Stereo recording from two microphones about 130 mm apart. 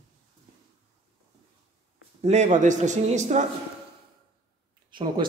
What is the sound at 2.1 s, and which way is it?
A man's voice, 60° right (ahead or behind).